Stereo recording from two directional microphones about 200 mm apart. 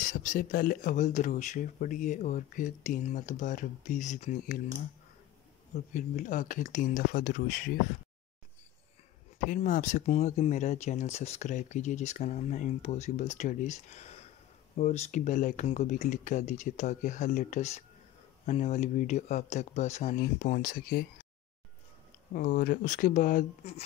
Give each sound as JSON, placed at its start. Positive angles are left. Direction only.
{"t": 0.0, "sound": "speech", "side_deg": 40}
{"t": 5.9, "sound": "speech", "side_deg": 40}
{"t": 9.4, "sound": "speech", "side_deg": 40}
{"t": 22.3, "sound": "speech", "side_deg": 40}